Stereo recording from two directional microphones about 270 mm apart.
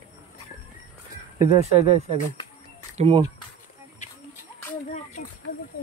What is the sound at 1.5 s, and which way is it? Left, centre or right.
Speech, right.